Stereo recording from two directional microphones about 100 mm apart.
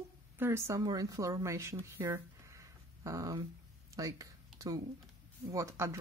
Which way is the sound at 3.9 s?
35° right (ahead or behind).